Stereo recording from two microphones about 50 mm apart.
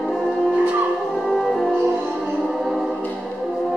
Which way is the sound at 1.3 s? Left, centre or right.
Centre.